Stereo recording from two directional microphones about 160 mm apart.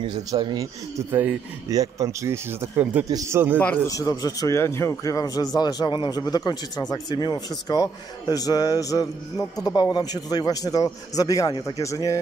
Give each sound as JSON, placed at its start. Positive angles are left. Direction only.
{"t": 0.0, "sound": "speech", "side_deg": -25}
{"t": 1.7, "sound": "speech", "side_deg": -20}
{"t": 3.5, "sound": "a man's voice", "side_deg": 10}
{"t": 3.9, "sound": "a man's voice", "side_deg": 25}